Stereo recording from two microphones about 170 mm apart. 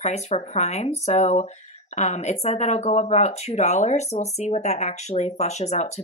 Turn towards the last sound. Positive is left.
turn(degrees=40)  # may be behind; listen again after turning